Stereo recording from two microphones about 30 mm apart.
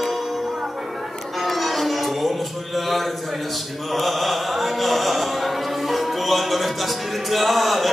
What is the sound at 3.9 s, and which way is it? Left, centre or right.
Chant, centre.